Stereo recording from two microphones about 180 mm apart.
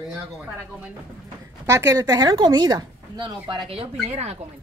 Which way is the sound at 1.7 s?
20° right (ahead or behind).